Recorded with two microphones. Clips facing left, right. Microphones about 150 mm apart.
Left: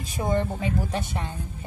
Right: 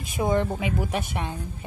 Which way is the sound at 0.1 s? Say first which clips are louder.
Right 2 dB; 15° right (ahead or behind).